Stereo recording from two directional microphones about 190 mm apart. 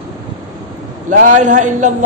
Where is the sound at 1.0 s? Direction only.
40° right (ahead or behind).